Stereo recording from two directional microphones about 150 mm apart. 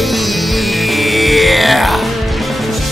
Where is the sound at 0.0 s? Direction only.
Centre (ahead or behind).